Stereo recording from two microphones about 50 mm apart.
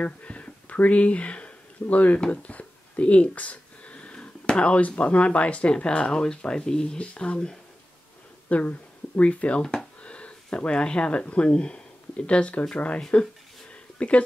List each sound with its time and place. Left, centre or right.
0.0 s a sound: left
2.1 s speech: left
8.5 s speech: left
13.0 s speech: centre
13.9 s speech: left